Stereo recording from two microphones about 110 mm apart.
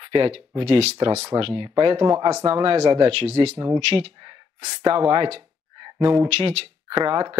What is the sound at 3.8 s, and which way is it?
Speech, 50° right (ahead or behind).